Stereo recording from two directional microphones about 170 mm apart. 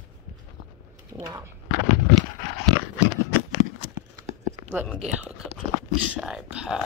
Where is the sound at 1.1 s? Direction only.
20° right (ahead or behind).